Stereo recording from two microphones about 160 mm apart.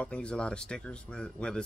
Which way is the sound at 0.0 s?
5° left (ahead or behind).